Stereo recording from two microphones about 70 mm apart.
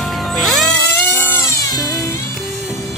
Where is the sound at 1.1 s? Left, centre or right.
Left.